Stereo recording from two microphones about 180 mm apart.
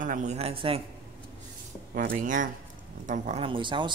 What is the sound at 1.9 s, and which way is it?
A man's voice, 50° right (ahead or behind).